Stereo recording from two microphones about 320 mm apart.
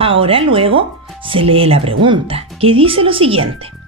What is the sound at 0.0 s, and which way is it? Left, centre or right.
Speech, centre.